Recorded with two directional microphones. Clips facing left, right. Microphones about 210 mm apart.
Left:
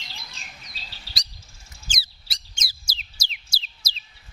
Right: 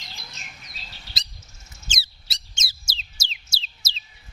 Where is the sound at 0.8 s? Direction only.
30° left (ahead or behind).